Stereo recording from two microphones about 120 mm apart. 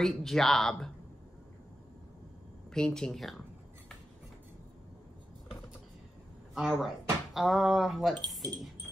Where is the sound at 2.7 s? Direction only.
5° left (ahead or behind).